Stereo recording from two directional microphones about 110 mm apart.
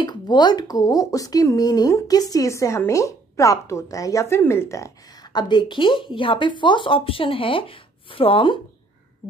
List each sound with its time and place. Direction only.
0.0 s speech: 40° left (ahead or behind)